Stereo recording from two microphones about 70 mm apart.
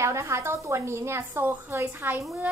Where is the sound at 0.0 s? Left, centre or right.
Right.